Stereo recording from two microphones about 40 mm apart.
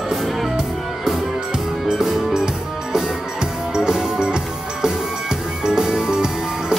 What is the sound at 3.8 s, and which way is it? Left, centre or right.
Music, centre.